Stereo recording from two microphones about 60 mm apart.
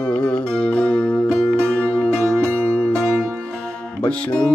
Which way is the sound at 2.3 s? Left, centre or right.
Right.